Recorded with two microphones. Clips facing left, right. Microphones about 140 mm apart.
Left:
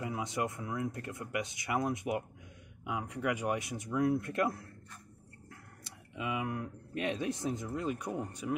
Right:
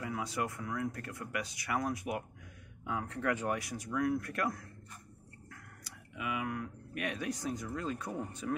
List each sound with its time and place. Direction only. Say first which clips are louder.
0.0 s speech: left 1 dB; 25° left (ahead or behind)